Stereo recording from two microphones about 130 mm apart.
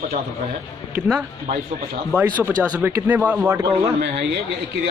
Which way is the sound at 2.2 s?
15° right (ahead or behind).